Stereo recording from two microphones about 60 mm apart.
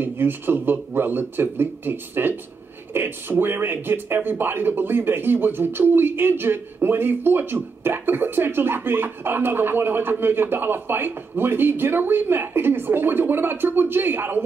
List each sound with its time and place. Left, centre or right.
0.0 s speech: right